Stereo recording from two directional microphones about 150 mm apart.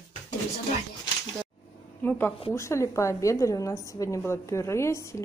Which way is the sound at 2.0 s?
10° left (ahead or behind).